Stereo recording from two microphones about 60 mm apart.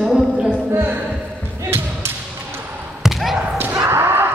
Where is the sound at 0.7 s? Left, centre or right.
Right.